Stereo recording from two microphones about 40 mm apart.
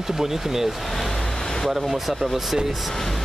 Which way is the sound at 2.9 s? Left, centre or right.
Centre.